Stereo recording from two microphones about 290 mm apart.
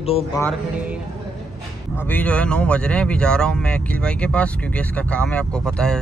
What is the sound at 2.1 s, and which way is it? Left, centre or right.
Speech, centre.